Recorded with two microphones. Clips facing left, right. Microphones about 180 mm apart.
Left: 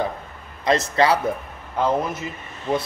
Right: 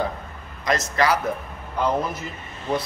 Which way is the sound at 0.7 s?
30° left (ahead or behind).